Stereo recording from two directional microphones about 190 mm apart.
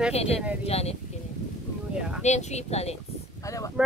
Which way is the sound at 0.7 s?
35° left (ahead or behind).